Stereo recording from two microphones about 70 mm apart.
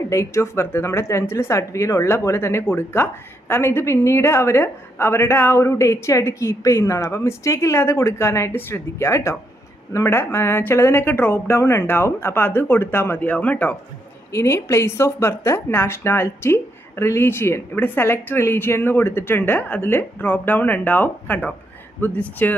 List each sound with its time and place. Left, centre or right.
0.1 s speech: left
14.3 s speech: left